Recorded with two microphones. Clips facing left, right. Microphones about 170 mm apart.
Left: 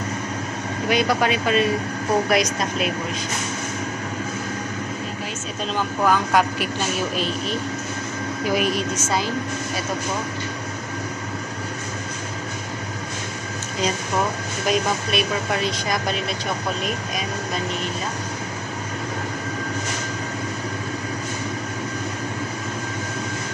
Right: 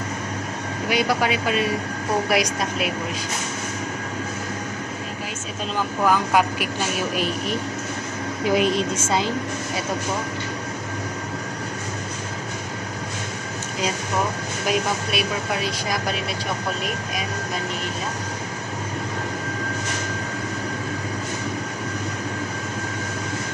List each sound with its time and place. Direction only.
0.8 s speech: 10° right (ahead or behind)
6.0 s speech: 5° right (ahead or behind); by 9.3 s 25° right (ahead or behind)
14.7 s speech: 5° right (ahead or behind)